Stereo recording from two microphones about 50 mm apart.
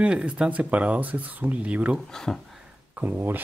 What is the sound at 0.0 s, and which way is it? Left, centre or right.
Speech, right.